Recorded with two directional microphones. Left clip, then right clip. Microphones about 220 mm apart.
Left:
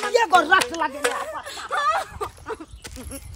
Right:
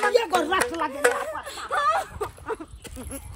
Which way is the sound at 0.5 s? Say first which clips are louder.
Left 5 dB; 40° left (ahead or behind).